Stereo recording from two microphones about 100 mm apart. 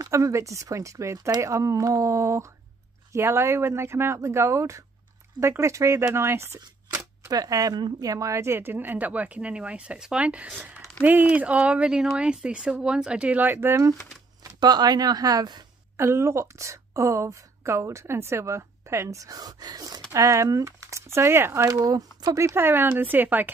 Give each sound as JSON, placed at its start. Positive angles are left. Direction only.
{"t": 0.0, "sound": "a woman's voice", "side_deg": -30}
{"t": 7.2, "sound": "speech", "side_deg": -35}
{"t": 14.6, "sound": "speech", "side_deg": -45}
{"t": 16.0, "sound": "a woman's voice", "side_deg": -30}
{"t": 21.6, "sound": "a woman's voice", "side_deg": -35}